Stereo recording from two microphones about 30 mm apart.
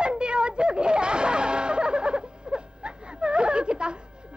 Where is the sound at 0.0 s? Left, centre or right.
Right.